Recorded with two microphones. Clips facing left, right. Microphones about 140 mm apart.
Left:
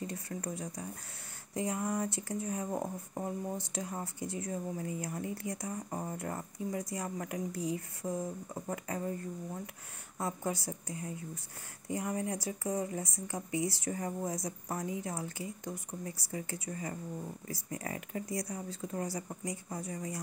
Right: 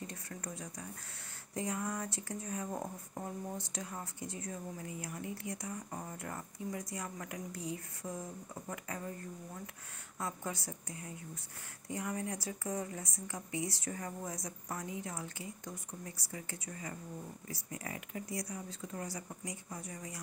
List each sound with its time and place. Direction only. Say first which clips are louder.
0.0 s speech: left 6 dB; 30° left (ahead or behind)
10.1 s speech: left 5 dB; 30° left (ahead or behind)